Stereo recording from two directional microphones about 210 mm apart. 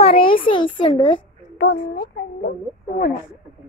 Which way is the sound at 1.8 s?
45° left (ahead or behind).